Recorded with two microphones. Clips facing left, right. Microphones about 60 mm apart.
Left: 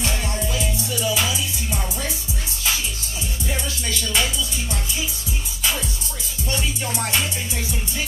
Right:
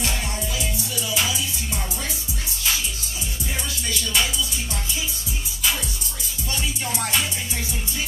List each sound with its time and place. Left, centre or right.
0.0 s music: left